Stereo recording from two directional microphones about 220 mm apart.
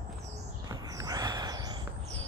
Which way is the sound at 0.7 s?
15° right (ahead or behind).